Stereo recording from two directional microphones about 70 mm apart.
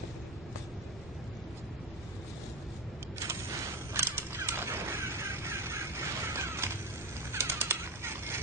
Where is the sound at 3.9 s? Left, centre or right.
Right.